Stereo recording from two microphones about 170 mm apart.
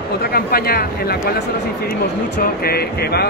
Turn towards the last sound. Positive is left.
turn(degrees=70)  # may be behind; listen again after turning